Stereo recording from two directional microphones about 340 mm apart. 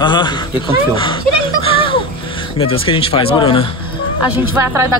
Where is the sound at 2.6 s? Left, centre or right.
Centre.